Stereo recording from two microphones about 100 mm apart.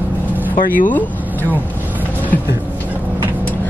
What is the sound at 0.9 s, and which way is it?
Speech, 15° left (ahead or behind).